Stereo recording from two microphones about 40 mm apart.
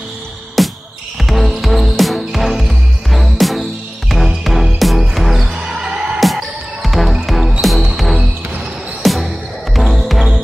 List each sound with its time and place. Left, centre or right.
0.6 s music: centre
5.6 s basketball bounce: centre
6.1 s music: centre
9.8 s basketball bounce: centre